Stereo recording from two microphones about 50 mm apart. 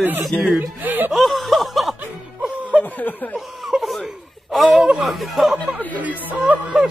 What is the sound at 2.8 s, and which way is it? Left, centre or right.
Snicker, left.